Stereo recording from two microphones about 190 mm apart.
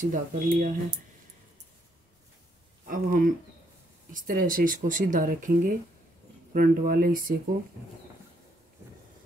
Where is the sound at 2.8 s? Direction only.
45° right (ahead or behind).